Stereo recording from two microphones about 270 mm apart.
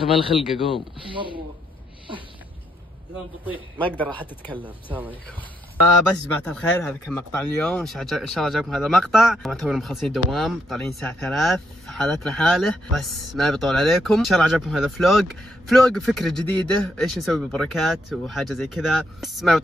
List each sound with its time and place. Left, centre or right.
0.4 s speech: centre
1.1 s speech: centre
3.8 s speech: centre
6.3 s speech: centre